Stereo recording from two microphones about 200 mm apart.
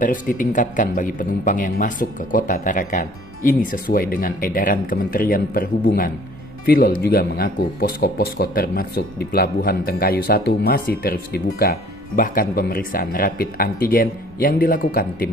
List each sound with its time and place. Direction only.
0.0 s speech: 40° left (ahead or behind)